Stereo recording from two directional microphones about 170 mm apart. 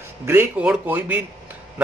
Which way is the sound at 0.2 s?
15° right (ahead or behind).